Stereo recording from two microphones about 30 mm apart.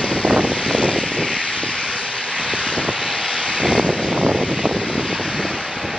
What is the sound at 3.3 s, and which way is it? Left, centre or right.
Vehicle, right.